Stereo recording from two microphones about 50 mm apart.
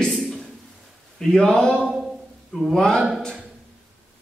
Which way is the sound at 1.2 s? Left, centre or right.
Centre.